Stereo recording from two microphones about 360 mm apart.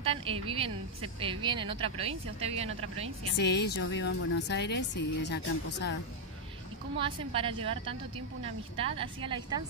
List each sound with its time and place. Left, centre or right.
0.0 s a woman's voice: centre
3.3 s a woman's voice: left
7.0 s a woman's voice: centre
8.9 s a woman's voice: centre